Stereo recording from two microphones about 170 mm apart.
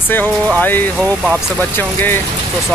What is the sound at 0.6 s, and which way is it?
Speech, 10° left (ahead or behind).